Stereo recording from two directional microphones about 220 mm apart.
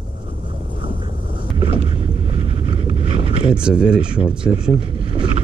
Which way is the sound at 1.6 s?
25° right (ahead or behind).